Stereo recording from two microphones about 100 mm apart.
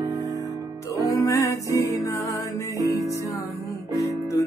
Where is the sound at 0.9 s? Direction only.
35° left (ahead or behind).